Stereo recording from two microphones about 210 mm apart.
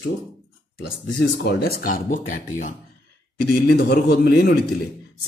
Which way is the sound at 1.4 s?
50° left (ahead or behind).